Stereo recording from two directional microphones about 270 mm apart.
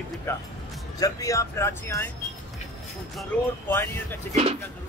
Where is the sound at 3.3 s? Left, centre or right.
Centre.